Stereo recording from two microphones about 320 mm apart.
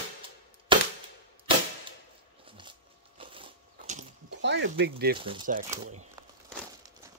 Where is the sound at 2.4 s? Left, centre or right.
Centre.